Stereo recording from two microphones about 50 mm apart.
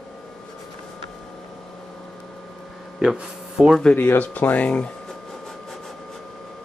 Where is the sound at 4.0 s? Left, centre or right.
Left.